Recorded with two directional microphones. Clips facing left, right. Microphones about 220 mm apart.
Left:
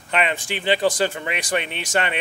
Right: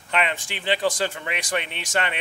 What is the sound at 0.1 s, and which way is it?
Speech, 10° left (ahead or behind).